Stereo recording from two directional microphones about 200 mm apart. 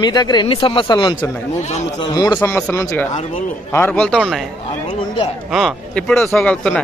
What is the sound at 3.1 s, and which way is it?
Speech, 35° left (ahead or behind).